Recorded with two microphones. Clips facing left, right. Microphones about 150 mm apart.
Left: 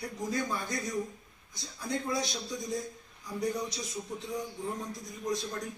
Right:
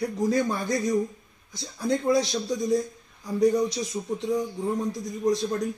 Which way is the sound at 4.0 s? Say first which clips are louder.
Right 7 dB; 65° right (ahead or behind).